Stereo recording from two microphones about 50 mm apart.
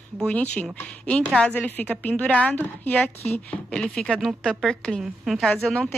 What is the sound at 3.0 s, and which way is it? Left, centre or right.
Speech, left.